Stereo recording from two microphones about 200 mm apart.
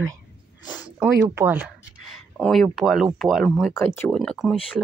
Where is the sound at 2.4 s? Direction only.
5° left (ahead or behind).